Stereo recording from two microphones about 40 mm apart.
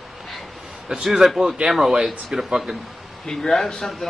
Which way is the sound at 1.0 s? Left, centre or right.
Centre.